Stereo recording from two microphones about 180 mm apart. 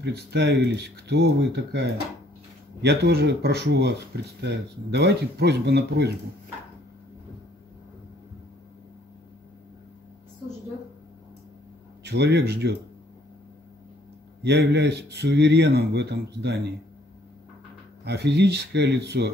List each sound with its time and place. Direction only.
0.0 s speech: 65° right (ahead or behind)
12.0 s speech: 65° right (ahead or behind)
14.4 s speech: 70° right (ahead or behind)
18.0 s speech: 65° right (ahead or behind)